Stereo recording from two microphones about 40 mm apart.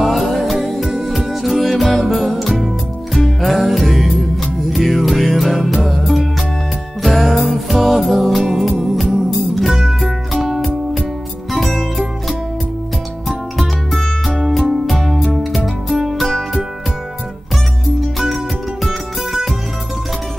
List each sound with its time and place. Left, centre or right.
0.0 s music: centre
3.3 s music: centre
9.7 s music: centre
9.9 s music: centre
14.0 s music: centre
18.2 s music: centre